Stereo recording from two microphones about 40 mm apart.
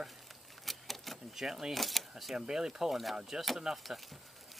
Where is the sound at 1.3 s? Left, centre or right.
Centre.